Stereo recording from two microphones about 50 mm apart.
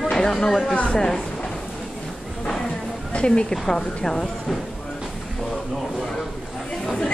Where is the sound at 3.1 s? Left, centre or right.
Left.